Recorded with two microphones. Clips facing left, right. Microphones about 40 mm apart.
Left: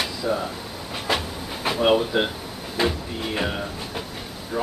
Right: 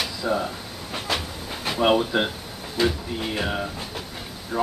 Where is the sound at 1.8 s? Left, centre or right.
Centre.